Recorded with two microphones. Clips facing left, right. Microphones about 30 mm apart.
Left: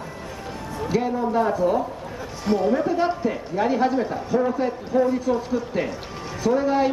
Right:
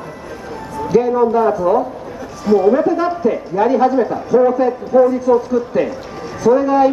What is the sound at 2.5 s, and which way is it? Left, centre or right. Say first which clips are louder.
A man's voice: right 9 dB; centre.